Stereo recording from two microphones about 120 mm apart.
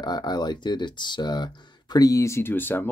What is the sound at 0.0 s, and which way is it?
Speech, 35° left (ahead or behind).